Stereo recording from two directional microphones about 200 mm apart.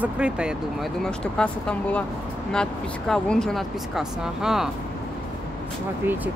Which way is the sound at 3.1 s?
Centre (ahead or behind).